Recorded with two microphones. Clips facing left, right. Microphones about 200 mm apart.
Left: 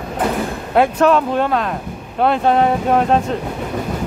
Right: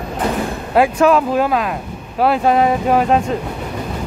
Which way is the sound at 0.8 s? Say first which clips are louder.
Right 1 dB; centre (ahead or behind).